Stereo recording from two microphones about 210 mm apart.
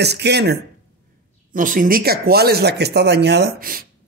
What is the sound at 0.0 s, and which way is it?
Speech, 50° right (ahead or behind).